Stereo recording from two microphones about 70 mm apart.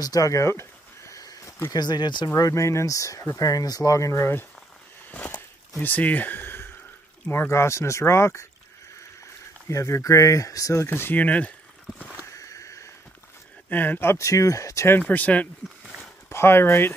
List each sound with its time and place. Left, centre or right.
0.0 s a sound: left
1.2 s a sound: left
1.7 s speech: left
5.1 s a sound: left
5.8 s speech: left
9.7 s speech: left
10.9 s speech: left
12.4 s a sound: left
13.7 s speech: left
14.1 s speech: left
15.0 s speech: left
16.3 s speech: left